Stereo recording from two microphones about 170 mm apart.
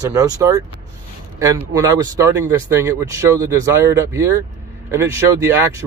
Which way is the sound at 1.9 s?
15° right (ahead or behind).